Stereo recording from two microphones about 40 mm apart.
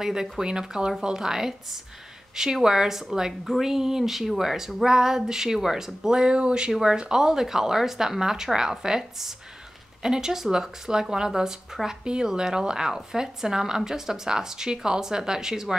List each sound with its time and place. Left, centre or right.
0.0 s a woman's voice: centre